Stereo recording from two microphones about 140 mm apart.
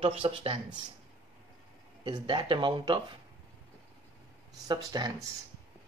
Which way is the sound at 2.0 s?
35° right (ahead or behind).